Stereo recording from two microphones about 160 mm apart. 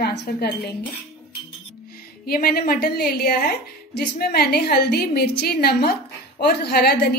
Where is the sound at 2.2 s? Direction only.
70° left (ahead or behind).